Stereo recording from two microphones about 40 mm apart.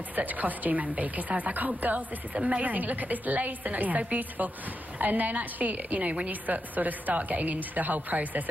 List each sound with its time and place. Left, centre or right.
0.1 s a woman's voice: right